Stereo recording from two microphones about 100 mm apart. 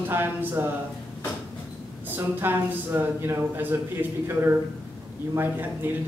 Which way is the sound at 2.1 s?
20° right (ahead or behind).